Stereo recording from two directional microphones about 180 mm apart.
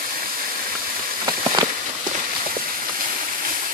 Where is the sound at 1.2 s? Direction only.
25° right (ahead or behind).